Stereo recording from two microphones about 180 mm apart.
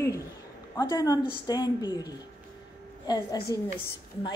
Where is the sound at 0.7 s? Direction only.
20° left (ahead or behind).